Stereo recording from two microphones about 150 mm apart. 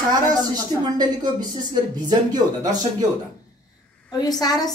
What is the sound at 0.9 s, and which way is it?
Speech, 25° right (ahead or behind).